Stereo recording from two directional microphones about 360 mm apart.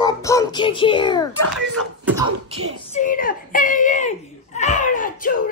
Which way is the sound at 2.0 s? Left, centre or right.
Centre.